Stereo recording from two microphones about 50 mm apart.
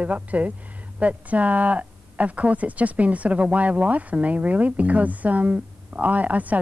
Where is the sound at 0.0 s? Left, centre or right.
Right.